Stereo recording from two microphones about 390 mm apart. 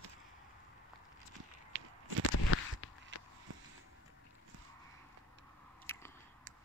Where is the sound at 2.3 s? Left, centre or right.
Left.